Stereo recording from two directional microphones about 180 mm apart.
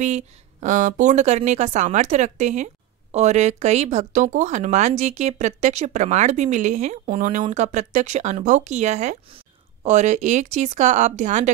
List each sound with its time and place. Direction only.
0.0 s speech: 40° right (ahead or behind)